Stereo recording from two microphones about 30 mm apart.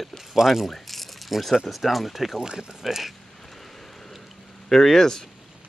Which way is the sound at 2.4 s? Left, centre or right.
Right.